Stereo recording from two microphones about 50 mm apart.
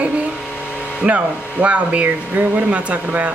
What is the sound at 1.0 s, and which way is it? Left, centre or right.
Speech, right.